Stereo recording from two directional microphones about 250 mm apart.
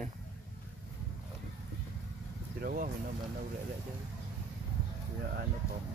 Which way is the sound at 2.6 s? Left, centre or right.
Right.